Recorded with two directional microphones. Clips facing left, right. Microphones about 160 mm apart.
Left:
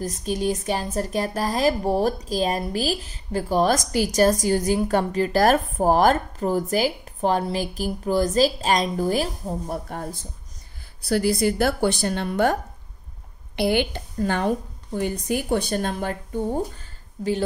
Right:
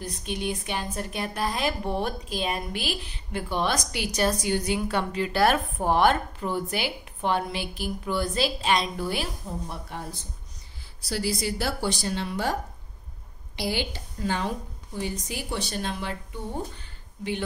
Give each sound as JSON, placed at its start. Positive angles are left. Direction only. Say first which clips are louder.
{"t": 0.0, "sound": "a woman's voice", "louder": "left 6 dB", "side_deg": 40}
{"t": 13.6, "sound": "a woman's voice", "louder": "left 8 dB", "side_deg": 55}